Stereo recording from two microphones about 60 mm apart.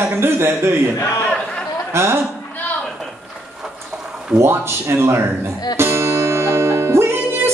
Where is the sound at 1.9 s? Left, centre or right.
Right.